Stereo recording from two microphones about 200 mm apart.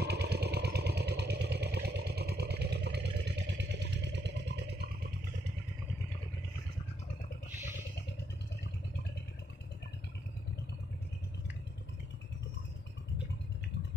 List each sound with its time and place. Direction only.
0.0 s motorcycle: 55° right (ahead or behind)